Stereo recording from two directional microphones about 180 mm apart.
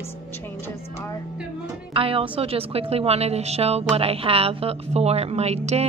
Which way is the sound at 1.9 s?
30° right (ahead or behind).